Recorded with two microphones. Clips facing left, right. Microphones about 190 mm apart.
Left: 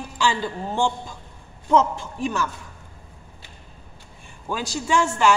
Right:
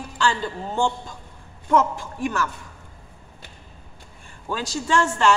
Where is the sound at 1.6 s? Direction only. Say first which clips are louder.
Left 1 dB; 20° left (ahead or behind).